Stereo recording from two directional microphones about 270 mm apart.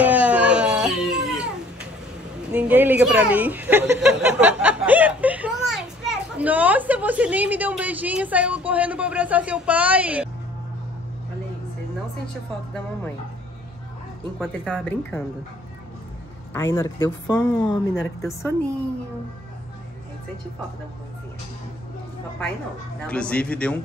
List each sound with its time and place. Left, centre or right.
0.0 s a sound: centre
2.5 s speech: centre
14.4 s speech: centre
16.5 s speech: centre
23.0 s speech: centre